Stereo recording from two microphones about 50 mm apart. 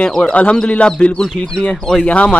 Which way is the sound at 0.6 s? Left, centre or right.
Left.